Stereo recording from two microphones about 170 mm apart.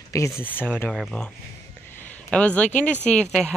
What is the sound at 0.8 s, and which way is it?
Speech, centre (ahead or behind).